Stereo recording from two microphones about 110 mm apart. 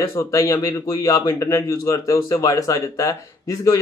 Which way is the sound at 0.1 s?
30° left (ahead or behind).